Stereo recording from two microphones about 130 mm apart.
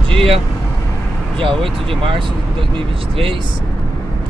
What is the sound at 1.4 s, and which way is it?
Speech, 45° right (ahead or behind).